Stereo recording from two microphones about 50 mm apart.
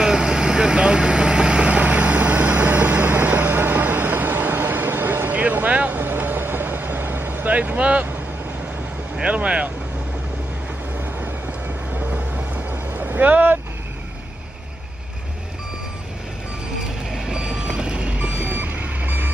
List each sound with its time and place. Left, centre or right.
0.0 s vehicle: centre; by 5.4 s right
5.4 s vehicle: right
7.5 s vehicle: right
9.2 s vehicle: right
11.1 s vehicle: right
17.1 s vehicle: centre; by 18.5 s right
18.5 s reversing beeps: right